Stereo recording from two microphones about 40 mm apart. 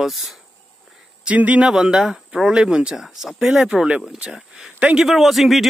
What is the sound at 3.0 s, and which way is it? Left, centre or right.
Speech, centre.